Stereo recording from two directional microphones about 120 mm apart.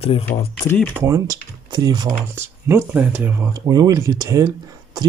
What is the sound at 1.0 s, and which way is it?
Speech, 30° right (ahead or behind).